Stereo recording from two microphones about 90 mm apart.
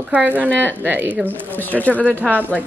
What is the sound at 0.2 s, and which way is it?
Speech, 15° right (ahead or behind).